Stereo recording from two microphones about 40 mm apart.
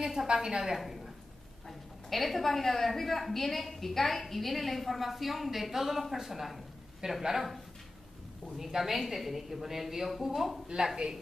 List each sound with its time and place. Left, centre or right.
0.0 s a woman's voice: centre
0.7 s a woman's voice: centre